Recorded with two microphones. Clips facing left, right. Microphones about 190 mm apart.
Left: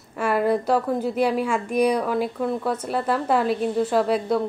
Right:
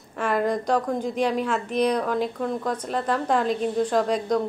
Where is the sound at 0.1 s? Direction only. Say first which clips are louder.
Left 3 dB; 5° left (ahead or behind).